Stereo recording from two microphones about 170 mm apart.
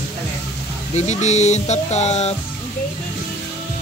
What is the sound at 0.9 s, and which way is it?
Speech, 45° left (ahead or behind).